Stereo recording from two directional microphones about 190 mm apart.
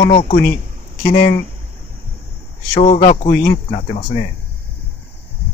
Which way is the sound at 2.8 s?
35° left (ahead or behind).